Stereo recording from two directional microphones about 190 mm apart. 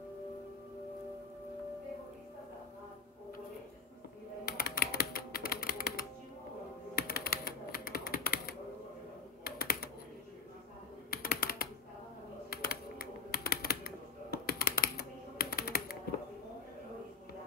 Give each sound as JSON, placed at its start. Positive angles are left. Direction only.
{"t": 4.5, "sound": "typing", "side_deg": 55}
{"t": 11.1, "sound": "typing", "side_deg": 55}